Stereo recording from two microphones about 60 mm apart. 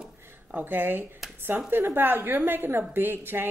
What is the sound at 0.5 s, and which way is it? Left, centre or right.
A woman's voice, right.